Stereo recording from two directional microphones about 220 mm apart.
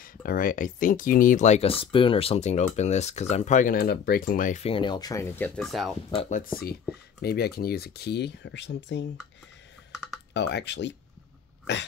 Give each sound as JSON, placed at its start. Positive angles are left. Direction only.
{"t": 0.0, "sound": "speech", "side_deg": 40}
{"t": 6.1, "sound": "speech", "side_deg": 35}
{"t": 10.3, "sound": "speech", "side_deg": 50}